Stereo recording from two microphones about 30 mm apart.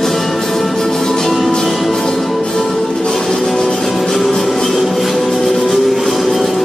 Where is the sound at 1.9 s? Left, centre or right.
Centre.